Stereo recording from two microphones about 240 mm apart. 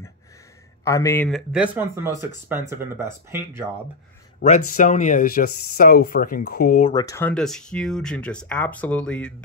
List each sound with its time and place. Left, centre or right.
0.8 s speech: centre
4.4 s speech: left
6.9 s speech: centre